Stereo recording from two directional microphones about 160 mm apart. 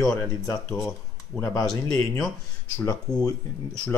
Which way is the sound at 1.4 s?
25° left (ahead or behind).